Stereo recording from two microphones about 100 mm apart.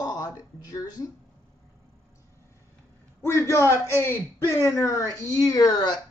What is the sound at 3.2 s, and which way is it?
A man's voice, 30° left (ahead or behind).